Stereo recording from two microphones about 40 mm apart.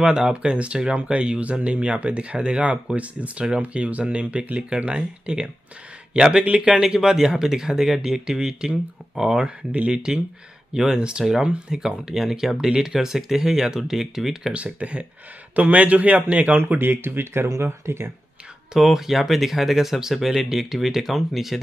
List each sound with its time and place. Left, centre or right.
0.0 s a man's voice: centre
9.7 s speech: right
10.7 s speech: centre
14.5 s a man's voice: right
16.7 s speech: right
18.8 s speech: centre